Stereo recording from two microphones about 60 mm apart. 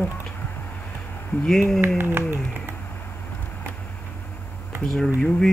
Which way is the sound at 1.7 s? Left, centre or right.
Right.